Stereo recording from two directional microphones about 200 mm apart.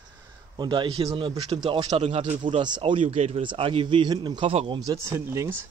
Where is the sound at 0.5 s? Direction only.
25° right (ahead or behind).